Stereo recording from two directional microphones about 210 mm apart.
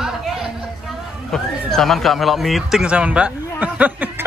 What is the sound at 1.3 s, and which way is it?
Speech, centre (ahead or behind).